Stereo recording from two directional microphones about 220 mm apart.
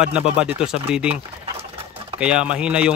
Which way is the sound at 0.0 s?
5° right (ahead or behind).